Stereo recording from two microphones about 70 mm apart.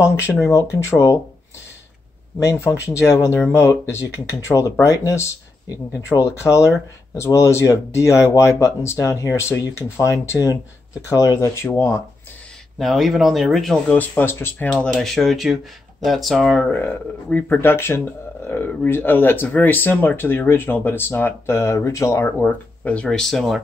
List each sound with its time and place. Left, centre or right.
0.0 s speech: left
2.6 s speech: left
6.1 s speech: centre
7.2 s speech: left
11.5 s speech: left
12.7 s speech: centre
13.8 s speech: left
15.0 s speech: centre
16.7 s speech: left
22.2 s speech: left
23.0 s speech: centre